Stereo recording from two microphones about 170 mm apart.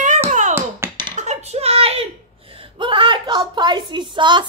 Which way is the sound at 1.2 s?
40° right (ahead or behind).